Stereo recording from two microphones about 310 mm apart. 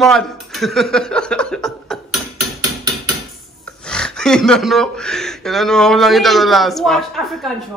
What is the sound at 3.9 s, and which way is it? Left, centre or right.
Speech, centre.